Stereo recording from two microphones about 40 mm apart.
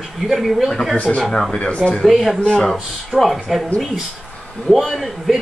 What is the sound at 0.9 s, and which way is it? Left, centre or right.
Speech, left.